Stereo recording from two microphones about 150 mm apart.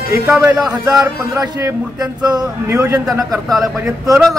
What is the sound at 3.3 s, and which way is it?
Speech, centre (ahead or behind).